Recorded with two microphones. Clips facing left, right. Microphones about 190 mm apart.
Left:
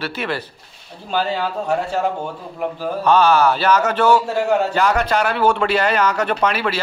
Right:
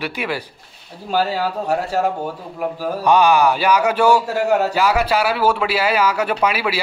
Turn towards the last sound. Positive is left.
turn(degrees=-10)  # may be behind; listen again after turning